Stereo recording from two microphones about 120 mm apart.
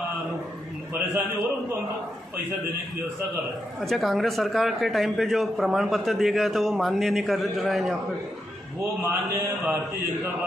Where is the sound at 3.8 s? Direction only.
Centre (ahead or behind).